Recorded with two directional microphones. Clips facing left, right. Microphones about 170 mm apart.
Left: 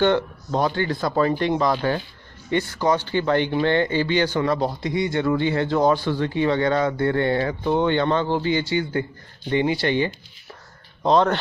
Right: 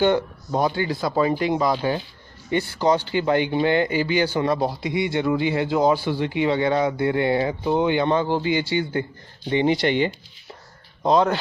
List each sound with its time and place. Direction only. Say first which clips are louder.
0.0 s a man's voice: even; 10° right (ahead or behind)
11.0 s speech: even; 10° right (ahead or behind)